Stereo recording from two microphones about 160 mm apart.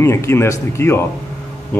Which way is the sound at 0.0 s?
15° left (ahead or behind).